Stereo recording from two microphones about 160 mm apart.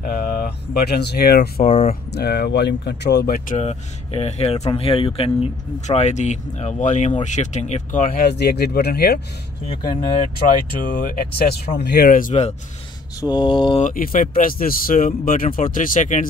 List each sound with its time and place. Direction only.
0.0 s speech: 70° left (ahead or behind); by 1.5 s 90° left
1.6 s mantra: 40° left (ahead or behind)
2.1 s speech: 85° left; by 3.5 s 65° left (ahead or behind)
3.5 s speech: 40° left (ahead or behind)
8.2 s speech: 90° left
10.8 s speech: 60° left (ahead or behind)
13.2 s mantra: 30° left (ahead or behind)
13.8 s speech: 60° left (ahead or behind)